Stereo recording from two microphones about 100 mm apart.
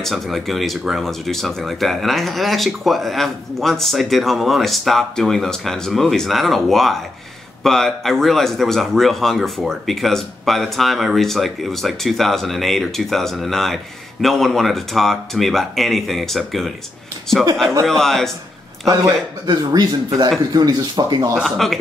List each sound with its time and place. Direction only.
0.0 s speech: centre (ahead or behind)
17.8 s speech: 5° left (ahead or behind)
18.9 s speech: 35° right (ahead or behind)
21.4 s speech: centre (ahead or behind)